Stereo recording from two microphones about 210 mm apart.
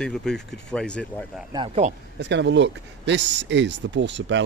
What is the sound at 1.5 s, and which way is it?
Speech, 30° right (ahead or behind).